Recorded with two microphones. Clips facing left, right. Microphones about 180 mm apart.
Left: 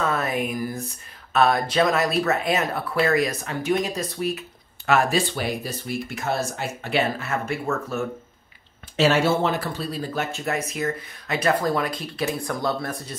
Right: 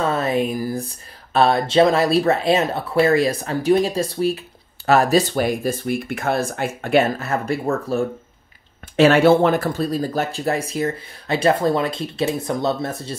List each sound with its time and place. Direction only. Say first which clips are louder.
0.0 s a sound: right 5 dB; 30° right (ahead or behind)
1.3 s speech: right 4 dB; 30° right (ahead or behind)
8.9 s speech: right 7 dB; 55° right (ahead or behind); by 13.1 s 25° right (ahead or behind)